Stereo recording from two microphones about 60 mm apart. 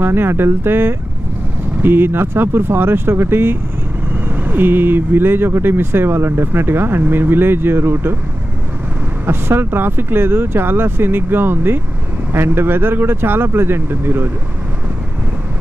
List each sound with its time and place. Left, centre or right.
0.0 s speech: right
9.2 s speech: right